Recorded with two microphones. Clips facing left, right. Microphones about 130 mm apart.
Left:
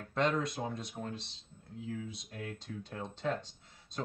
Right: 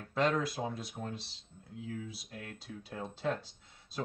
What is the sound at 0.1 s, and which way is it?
Speech, centre (ahead or behind).